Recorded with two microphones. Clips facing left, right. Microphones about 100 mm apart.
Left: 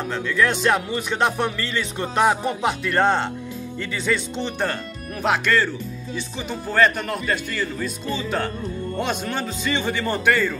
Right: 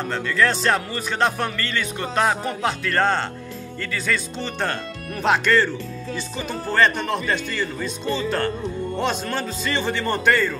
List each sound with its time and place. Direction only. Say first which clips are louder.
0.1 s speech: even; 10° left (ahead or behind)
5.2 s speech: right 2 dB; 5° left (ahead or behind)
6.7 s speech: even; 5° left (ahead or behind)